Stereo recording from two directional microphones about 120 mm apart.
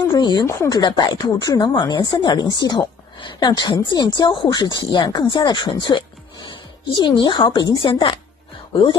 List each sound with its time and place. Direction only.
0.1 s speech: 35° left (ahead or behind)
0.5 s speech: 25° left (ahead or behind)
0.7 s speech: 35° left (ahead or behind)